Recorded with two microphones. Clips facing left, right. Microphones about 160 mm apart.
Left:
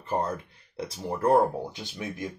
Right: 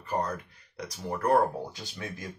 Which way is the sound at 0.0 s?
25° left (ahead or behind).